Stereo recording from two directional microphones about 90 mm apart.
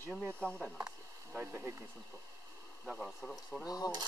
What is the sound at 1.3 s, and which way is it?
Speech, 15° right (ahead or behind).